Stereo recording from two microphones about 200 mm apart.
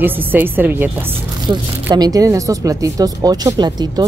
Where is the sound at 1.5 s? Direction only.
30° right (ahead or behind).